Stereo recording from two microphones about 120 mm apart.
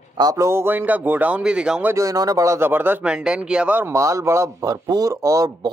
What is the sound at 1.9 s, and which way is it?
Speech, 30° right (ahead or behind).